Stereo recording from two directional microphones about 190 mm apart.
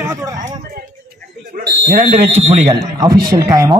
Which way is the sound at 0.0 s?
15° right (ahead or behind).